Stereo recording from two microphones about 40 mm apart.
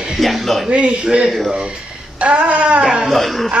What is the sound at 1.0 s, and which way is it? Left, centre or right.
A man's voice, centre.